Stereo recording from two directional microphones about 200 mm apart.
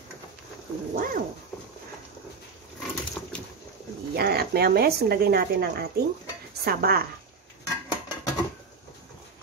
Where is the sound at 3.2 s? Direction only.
10° left (ahead or behind).